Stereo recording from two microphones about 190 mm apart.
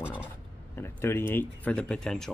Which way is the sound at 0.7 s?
15° left (ahead or behind).